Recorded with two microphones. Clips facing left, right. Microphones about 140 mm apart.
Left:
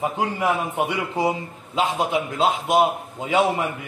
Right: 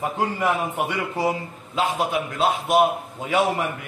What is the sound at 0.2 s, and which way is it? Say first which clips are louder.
A man's voice: right 2 dB; 15° left (ahead or behind).